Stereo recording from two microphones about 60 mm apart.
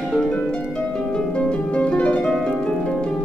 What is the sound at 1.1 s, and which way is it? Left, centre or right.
Harp, centre.